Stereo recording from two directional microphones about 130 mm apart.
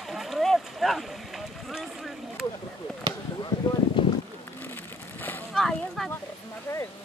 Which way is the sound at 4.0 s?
40° left (ahead or behind).